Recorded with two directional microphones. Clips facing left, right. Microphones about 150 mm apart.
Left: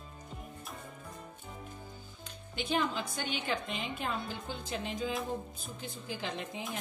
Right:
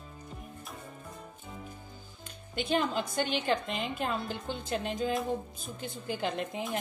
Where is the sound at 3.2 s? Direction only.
Centre (ahead or behind).